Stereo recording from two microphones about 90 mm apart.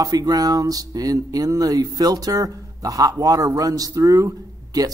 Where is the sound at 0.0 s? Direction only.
45° right (ahead or behind).